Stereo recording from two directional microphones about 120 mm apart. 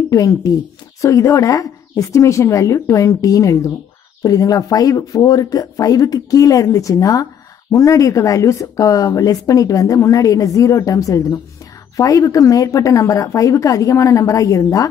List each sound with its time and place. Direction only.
0.1 s speech: 30° left (ahead or behind)